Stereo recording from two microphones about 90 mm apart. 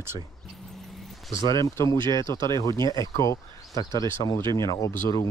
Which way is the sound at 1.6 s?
35° left (ahead or behind).